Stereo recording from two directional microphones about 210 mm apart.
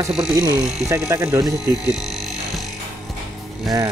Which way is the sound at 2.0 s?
Centre (ahead or behind).